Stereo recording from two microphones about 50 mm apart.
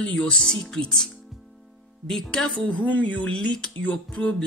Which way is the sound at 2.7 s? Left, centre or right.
Left.